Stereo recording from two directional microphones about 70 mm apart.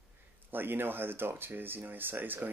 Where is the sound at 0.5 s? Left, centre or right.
Right.